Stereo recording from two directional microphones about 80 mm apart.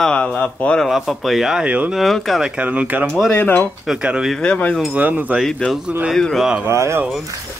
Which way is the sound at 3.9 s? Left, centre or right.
Centre.